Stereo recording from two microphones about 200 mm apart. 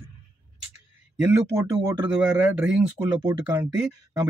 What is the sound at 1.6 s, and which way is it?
Speech, 15° right (ahead or behind).